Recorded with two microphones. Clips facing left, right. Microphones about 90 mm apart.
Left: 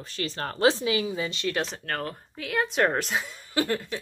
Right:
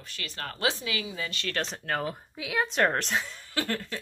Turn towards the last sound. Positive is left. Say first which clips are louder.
# left 4 dB
turn(degrees=15)  # may be behind; listen again after turning